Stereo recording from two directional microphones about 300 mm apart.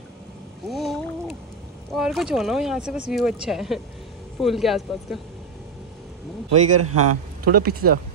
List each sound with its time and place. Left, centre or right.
0.7 s boat: centre
1.9 s speech: centre
6.8 s a man's voice: right
7.4 s speech: right